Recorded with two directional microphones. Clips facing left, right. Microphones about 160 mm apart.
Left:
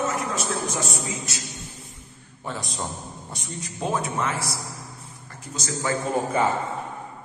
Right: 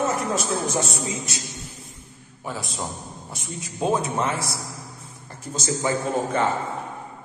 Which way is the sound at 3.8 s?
20° right (ahead or behind).